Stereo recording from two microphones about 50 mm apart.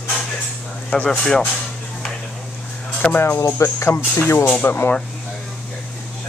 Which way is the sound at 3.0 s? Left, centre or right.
Centre.